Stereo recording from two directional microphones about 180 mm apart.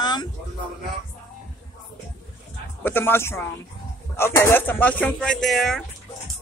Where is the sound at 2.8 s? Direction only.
10° left (ahead or behind).